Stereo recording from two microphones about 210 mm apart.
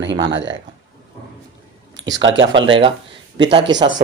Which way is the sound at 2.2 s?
65° right (ahead or behind).